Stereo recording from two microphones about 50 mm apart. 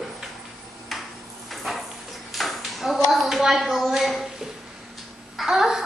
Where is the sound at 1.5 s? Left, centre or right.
Centre.